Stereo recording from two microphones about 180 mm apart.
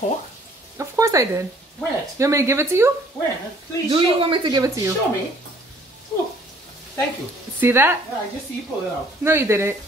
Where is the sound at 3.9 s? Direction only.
30° right (ahead or behind).